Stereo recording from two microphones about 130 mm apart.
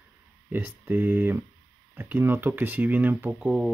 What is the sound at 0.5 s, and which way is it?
Speech, 15° right (ahead or behind).